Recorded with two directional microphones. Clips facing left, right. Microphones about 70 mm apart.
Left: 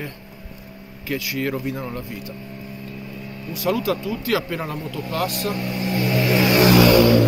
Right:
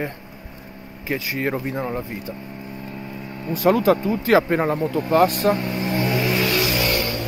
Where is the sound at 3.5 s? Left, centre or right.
Right.